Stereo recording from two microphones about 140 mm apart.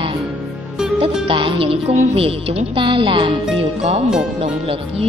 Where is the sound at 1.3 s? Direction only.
40° right (ahead or behind).